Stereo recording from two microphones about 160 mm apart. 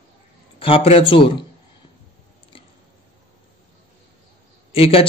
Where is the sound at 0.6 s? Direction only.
35° left (ahead or behind).